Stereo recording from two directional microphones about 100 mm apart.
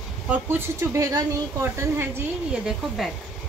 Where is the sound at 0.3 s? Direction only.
20° right (ahead or behind).